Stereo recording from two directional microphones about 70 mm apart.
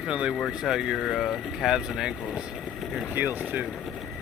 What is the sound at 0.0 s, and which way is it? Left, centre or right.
Speech, centre.